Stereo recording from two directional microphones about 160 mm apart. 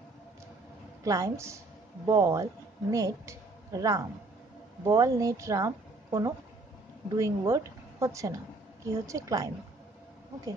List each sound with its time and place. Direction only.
1.0 s a woman's voice: 20° right (ahead or behind)